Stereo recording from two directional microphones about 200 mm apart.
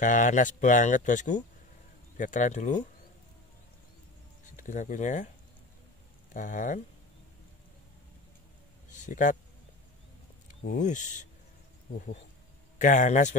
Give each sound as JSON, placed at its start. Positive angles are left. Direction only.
{"t": 0.0, "sound": "speech", "side_deg": 40}
{"t": 4.6, "sound": "speech", "side_deg": 40}
{"t": 6.3, "sound": "speech", "side_deg": 40}
{"t": 9.0, "sound": "speech", "side_deg": 40}
{"t": 10.6, "sound": "speech", "side_deg": 40}
{"t": 12.7, "sound": "speech", "side_deg": 40}